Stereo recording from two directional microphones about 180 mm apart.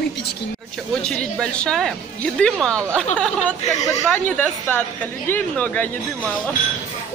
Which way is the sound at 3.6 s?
40° left (ahead or behind).